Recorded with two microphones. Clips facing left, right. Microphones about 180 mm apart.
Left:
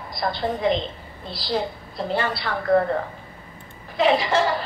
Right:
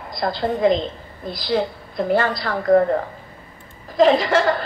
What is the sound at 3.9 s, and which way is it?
Speech, 40° right (ahead or behind).